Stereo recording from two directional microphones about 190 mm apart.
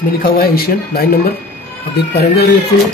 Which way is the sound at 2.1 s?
60° left (ahead or behind).